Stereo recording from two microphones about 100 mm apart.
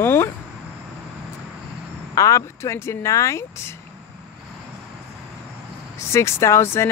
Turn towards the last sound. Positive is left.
turn(degrees=25)  # may be behind; listen again after turning